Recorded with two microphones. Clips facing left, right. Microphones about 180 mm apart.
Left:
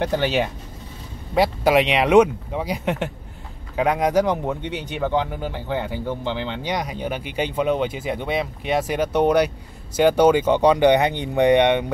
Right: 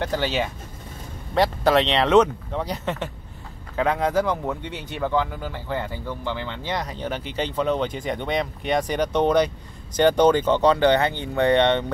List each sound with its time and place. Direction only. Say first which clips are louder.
0.0 s speech: left 3 dB; 20° left (ahead or behind)